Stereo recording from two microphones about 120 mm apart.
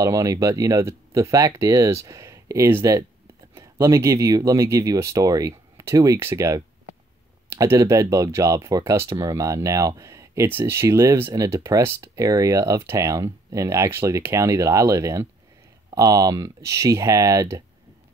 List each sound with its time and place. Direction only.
0.0 s speech: 25° right (ahead or behind)